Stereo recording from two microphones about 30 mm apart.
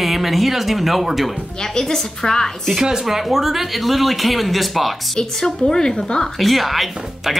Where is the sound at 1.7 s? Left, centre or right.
Centre.